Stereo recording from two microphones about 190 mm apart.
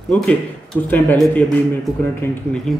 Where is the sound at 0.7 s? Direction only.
5° left (ahead or behind).